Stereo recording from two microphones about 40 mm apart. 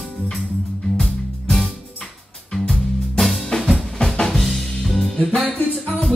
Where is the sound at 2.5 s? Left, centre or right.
Centre.